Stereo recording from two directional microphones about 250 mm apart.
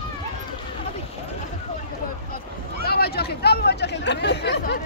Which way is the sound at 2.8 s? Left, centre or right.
Left.